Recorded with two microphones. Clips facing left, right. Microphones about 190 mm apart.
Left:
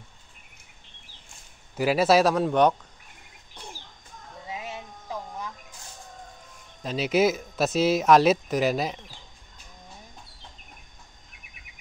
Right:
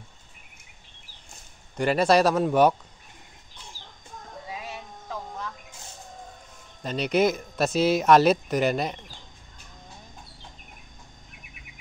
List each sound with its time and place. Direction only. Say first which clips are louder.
1.8 s speech: even; 5° left (ahead or behind)
4.5 s music: left 2 dB; 20° left (ahead or behind)
6.8 s speech: even; centre (ahead or behind)